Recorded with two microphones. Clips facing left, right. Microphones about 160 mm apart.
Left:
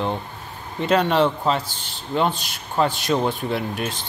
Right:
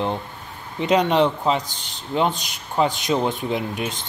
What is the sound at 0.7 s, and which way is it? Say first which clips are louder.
A man's voice: right 1 dB; 15° right (ahead or behind).